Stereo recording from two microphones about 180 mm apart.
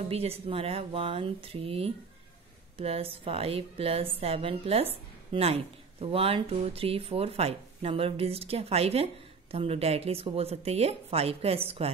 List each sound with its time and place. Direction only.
0.1 s a woman's voice: 35° right (ahead or behind)